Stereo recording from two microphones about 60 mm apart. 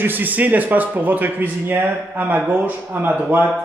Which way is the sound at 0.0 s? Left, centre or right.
Right.